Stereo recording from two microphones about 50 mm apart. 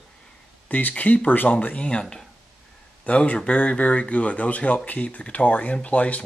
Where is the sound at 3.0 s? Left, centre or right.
Left.